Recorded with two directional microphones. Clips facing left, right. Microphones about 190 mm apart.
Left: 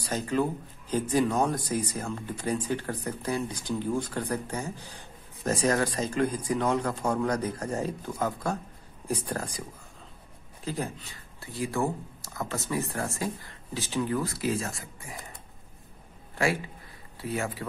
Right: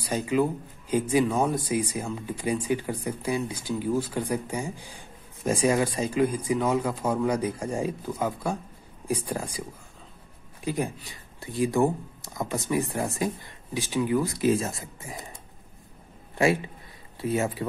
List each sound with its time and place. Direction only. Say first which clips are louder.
0.0 s speech: right 3 dB; 10° right (ahead or behind)
16.3 s speech: right 5 dB; 20° right (ahead or behind)